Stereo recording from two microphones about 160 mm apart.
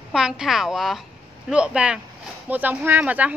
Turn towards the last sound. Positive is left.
turn(degrees=-10)  # may be behind; listen again after turning